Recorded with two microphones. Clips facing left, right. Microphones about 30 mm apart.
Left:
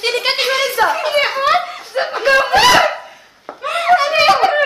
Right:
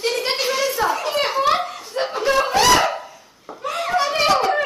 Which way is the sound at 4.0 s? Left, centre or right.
Left.